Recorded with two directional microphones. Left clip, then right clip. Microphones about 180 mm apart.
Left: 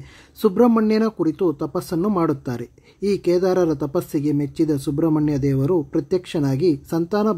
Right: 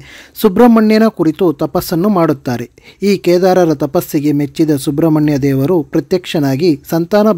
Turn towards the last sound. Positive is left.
turn(degrees=-30)  # may be behind; listen again after turning